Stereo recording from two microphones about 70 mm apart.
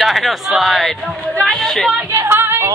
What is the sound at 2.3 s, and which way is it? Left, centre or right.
Yodeling, right.